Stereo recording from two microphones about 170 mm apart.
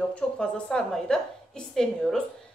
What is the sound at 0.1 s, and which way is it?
A woman's voice, 5° left (ahead or behind).